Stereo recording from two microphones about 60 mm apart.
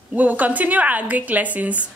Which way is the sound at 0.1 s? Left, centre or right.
Right.